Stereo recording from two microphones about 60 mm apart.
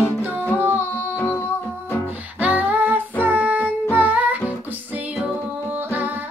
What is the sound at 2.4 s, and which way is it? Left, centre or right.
Female singing, right.